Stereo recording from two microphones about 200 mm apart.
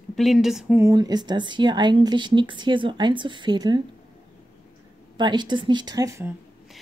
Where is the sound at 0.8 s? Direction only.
20° right (ahead or behind).